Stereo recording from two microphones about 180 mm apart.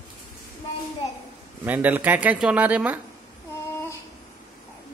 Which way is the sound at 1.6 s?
10° right (ahead or behind).